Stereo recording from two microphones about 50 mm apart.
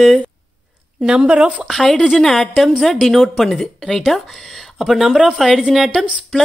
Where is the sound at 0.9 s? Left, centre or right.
Right.